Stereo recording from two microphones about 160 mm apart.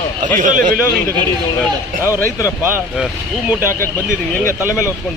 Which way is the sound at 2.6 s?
10° right (ahead or behind).